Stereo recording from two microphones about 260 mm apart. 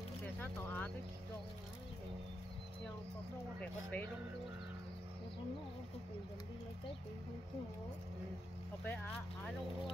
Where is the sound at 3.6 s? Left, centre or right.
Centre.